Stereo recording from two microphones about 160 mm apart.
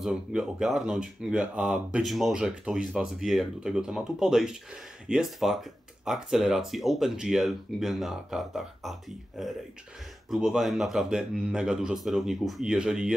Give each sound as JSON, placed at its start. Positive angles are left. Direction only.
{"t": 0.0, "sound": "speech", "side_deg": -5}